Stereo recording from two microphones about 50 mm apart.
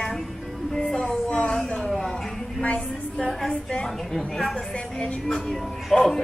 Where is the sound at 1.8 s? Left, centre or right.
Centre.